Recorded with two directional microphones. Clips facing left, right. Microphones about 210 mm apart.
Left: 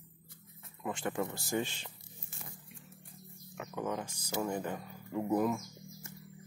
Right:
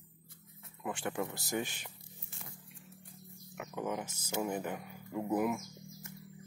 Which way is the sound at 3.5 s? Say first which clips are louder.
Left 1 dB; 15° right (ahead or behind).